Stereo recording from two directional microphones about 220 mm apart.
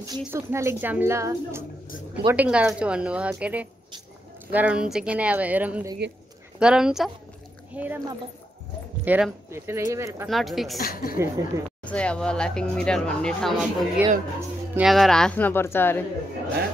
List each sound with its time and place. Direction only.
0.2 s speech: 10° right (ahead or behind)
9.0 s speech: 5° right (ahead or behind)
10.2 s speech: centre (ahead or behind)
10.8 s a woman's voice: 40° left (ahead or behind)
11.1 s speech: 15° right (ahead or behind)
11.8 s speech: 5° left (ahead or behind)